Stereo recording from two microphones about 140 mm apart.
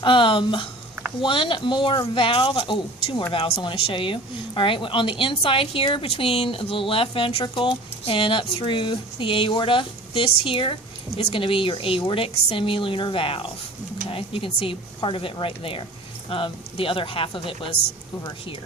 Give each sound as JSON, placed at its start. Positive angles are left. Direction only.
{"t": 0.0, "sound": "speech", "side_deg": 35}